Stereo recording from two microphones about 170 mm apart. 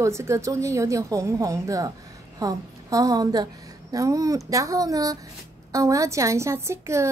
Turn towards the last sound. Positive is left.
turn(degrees=-15)  # may be behind; listen again after turning